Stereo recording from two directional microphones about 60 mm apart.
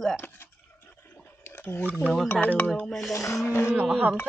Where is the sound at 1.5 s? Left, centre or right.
Left.